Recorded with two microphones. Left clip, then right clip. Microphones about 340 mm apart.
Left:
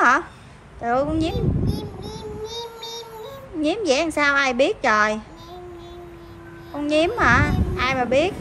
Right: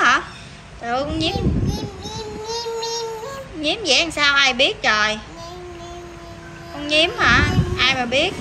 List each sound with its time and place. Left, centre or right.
0.8 s child singing: centre
3.6 s a woman's voice: centre
6.9 s a child's voice: centre